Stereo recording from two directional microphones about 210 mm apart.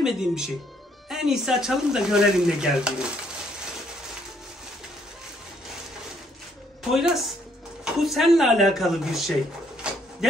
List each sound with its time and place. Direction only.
0.0 s speech: 5° right (ahead or behind)
6.8 s speech: centre (ahead or behind)